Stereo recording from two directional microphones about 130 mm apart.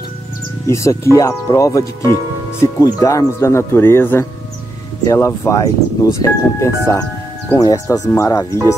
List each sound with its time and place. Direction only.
0.7 s speech: 25° left (ahead or behind)